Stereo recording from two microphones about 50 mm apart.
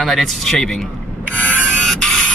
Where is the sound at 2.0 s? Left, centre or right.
Centre.